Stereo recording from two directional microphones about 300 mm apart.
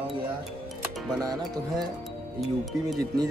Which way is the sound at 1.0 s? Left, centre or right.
Centre.